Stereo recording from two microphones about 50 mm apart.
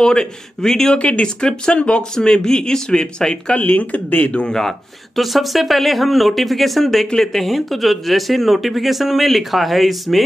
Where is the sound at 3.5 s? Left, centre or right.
Left.